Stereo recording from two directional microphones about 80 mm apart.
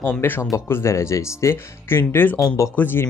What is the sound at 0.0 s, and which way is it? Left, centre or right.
Speech, left.